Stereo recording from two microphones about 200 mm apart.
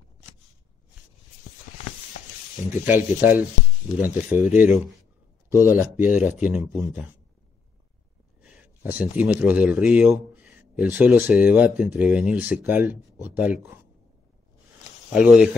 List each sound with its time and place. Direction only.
1.7 s a sound: 40° left (ahead or behind)
2.9 s speech: 10° right (ahead or behind)
8.4 s speech: 5° right (ahead or behind)
15.1 s speech: 5° right (ahead or behind)